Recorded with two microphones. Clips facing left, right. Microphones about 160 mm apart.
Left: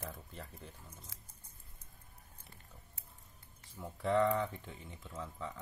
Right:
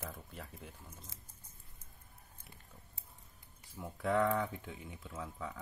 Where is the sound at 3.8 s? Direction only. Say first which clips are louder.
Left 1 dB; 5° right (ahead or behind).